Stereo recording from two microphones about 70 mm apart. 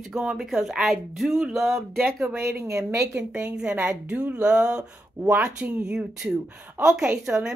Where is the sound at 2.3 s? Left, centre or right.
Right.